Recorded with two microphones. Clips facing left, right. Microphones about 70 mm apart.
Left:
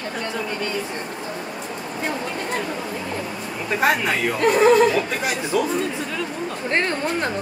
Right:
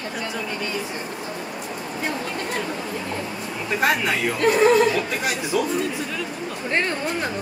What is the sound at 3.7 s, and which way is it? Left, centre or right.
Speech, centre.